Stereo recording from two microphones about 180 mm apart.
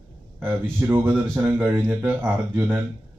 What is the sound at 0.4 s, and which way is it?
Speech, 15° right (ahead or behind).